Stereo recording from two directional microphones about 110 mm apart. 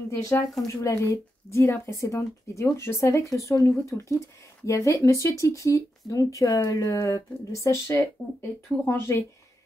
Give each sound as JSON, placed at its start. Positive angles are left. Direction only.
{"t": 0.1, "sound": "speech", "side_deg": 30}